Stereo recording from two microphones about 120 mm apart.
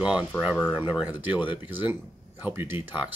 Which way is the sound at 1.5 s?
15° right (ahead or behind).